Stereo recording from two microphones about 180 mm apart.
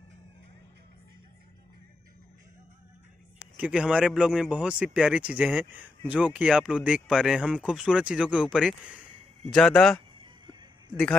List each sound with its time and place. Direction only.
3.5 s speech: 5° right (ahead or behind)
10.2 s music: 25° right (ahead or behind)